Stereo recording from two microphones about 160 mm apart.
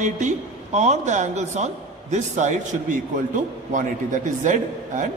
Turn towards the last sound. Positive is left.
turn(degrees=-50)  # may be behind; listen again after turning